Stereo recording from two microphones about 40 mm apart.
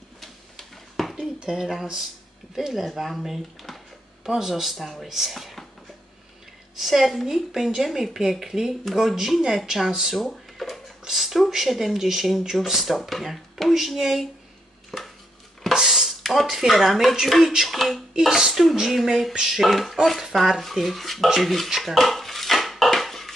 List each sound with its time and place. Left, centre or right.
0.2 s tick-tock: centre
1.4 s speech: centre
4.2 s speech: centre
6.8 s speech: centre
11.1 s speech: centre
14.9 s dishes: centre
15.7 s a sound: centre
16.2 s a sound: centre
16.4 s speech: centre
19.3 s speech: centre
19.6 s speech: centre
21.4 s dishes: centre